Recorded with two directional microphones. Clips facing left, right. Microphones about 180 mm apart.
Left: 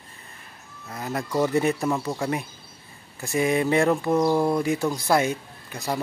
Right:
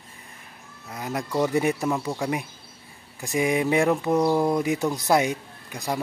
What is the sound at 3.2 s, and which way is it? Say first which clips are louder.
Speech: left 1 dB; 15° right (ahead or behind).